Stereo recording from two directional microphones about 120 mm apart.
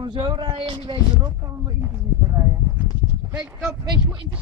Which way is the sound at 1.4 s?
25° right (ahead or behind).